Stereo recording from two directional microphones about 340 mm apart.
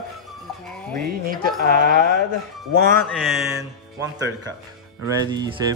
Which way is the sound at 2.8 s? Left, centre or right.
Right.